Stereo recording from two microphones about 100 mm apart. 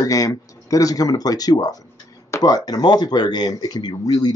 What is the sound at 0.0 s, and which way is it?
Speech, 35° left (ahead or behind).